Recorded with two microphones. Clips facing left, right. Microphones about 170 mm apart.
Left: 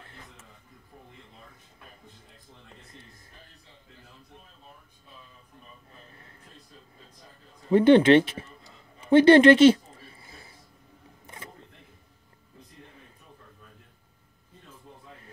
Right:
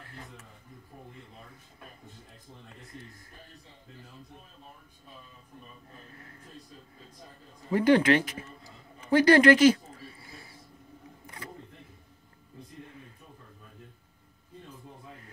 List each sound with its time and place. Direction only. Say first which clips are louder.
7.7 s speech: left 6 dB; 25° left (ahead or behind)
10.2 s a sound: right 1 dB; 25° left (ahead or behind)
11.2 s single-lens reflex camera: right 1 dB; 25° left (ahead or behind)